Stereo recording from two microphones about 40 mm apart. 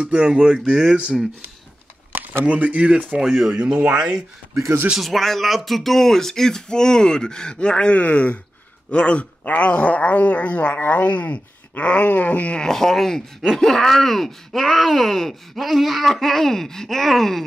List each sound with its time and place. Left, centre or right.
0.0 s speech: right
2.4 s speech: right
3.2 s speech: centre
5.0 s speech: centre; by 7.9 s left
7.9 s speech: left
12.5 s speech: centre